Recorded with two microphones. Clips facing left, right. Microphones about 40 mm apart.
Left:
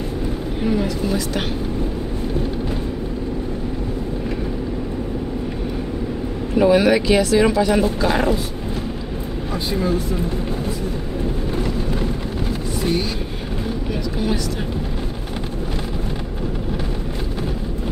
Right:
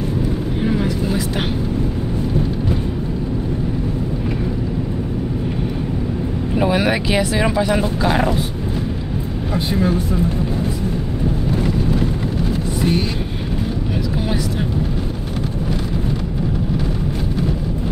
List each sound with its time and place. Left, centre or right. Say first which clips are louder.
0.7 s vehicle: even; centre
6.5 s speech: left 4 dB; centre
8.0 s speech: right 1 dB; centre
9.5 s speech: right 3 dB; right